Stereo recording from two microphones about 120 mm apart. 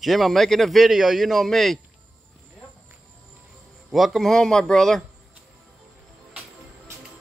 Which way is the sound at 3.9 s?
Centre (ahead or behind).